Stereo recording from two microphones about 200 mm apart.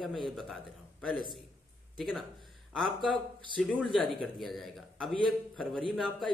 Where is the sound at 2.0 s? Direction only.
Centre (ahead or behind).